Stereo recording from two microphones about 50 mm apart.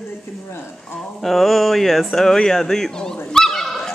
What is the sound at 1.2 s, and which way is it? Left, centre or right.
Speech, centre.